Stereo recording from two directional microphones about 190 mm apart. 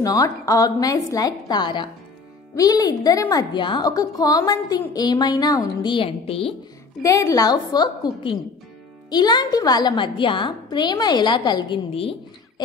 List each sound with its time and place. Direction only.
0.0 s a woman's voice: 20° left (ahead or behind)
7.0 s a woman's voice: 15° left (ahead or behind)